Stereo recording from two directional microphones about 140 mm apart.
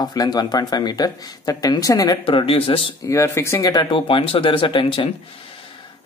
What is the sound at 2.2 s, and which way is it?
Speech, 40° left (ahead or behind).